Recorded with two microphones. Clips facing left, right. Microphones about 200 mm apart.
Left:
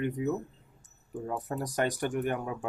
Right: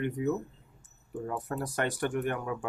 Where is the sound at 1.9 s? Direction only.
15° left (ahead or behind).